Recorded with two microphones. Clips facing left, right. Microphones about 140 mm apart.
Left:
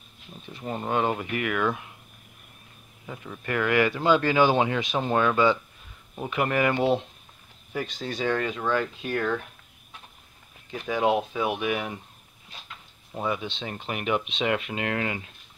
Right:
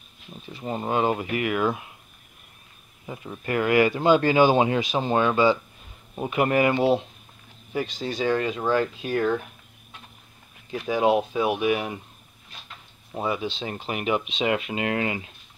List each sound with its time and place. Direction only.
0.5 s speech: 5° right (ahead or behind)
3.1 s speech: 20° right (ahead or behind)
6.1 s speech: 15° right (ahead or behind)
6.8 s speech: 5° right (ahead or behind)
10.7 s speech: 5° right (ahead or behind)
13.1 s speech: 10° right (ahead or behind)